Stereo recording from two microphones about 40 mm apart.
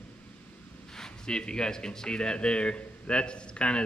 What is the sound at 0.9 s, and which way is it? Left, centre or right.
Speech, centre.